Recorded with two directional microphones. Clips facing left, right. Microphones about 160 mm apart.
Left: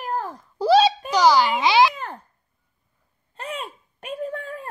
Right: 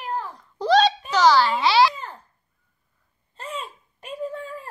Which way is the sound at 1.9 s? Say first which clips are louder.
Left 3 dB; 60° left (ahead or behind).